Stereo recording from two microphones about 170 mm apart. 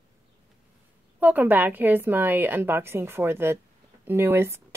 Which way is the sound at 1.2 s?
10° right (ahead or behind).